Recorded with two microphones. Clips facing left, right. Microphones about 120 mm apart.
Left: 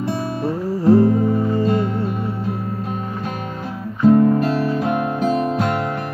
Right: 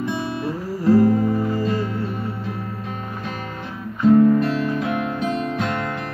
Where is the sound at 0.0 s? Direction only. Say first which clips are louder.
Left 2 dB; 25° left (ahead or behind).